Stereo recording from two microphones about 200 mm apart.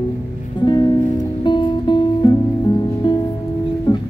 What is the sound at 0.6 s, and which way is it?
Music, 20° left (ahead or behind).